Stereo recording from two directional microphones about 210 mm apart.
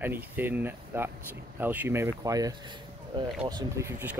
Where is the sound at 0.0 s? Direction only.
10° right (ahead or behind).